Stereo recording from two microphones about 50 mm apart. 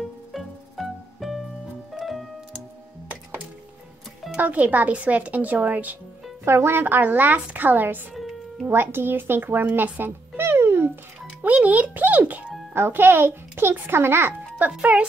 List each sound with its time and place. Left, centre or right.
0.0 s music: centre
4.4 s speech: right
6.4 s a child's voice: right
9.9 s music: right
11.4 s speech: right
12.7 s a child's voice: right
14.8 s speech: right